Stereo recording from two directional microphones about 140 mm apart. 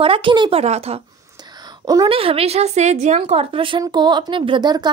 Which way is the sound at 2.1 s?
45° right (ahead or behind).